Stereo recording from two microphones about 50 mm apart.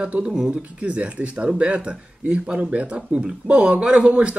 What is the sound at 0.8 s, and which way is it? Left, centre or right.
A man's voice, right.